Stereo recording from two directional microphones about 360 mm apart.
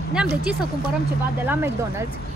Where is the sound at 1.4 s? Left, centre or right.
Centre.